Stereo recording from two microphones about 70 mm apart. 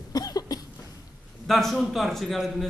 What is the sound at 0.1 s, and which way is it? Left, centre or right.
Cough, left.